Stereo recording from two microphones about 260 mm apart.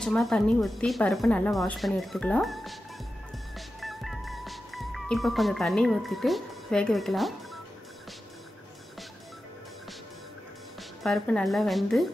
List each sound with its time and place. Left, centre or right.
0.0 s a woman's voice: centre
3.5 s music: centre
10.8 s speech: centre